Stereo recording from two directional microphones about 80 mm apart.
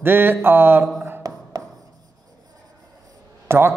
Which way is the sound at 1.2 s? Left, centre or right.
Right.